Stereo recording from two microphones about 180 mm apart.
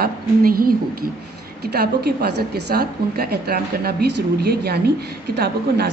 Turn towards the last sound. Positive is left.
turn(degrees=-65)  # may be behind; listen again after turning